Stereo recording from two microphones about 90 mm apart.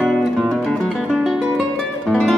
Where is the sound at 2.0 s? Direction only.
5° left (ahead or behind).